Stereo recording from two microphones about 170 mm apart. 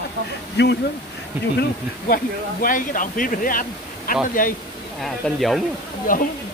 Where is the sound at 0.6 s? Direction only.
80° left.